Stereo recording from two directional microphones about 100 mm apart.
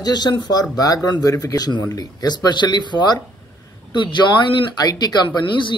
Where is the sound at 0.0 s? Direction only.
45° left (ahead or behind).